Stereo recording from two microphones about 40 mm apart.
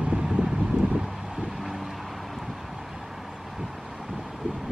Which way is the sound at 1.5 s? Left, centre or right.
Centre.